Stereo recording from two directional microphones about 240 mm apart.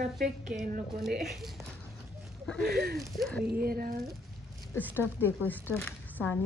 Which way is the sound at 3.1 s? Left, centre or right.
Centre.